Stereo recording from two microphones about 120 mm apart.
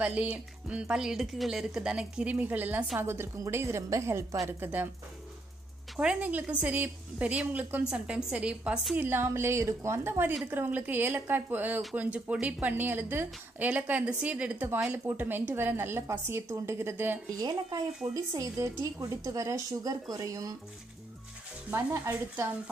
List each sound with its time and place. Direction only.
0.0 s a woman's voice: 10° right (ahead or behind)
5.9 s a woman's voice: 10° right (ahead or behind)
17.4 s a woman's voice: 35° right (ahead or behind)
21.6 s a woman's voice: 15° right (ahead or behind)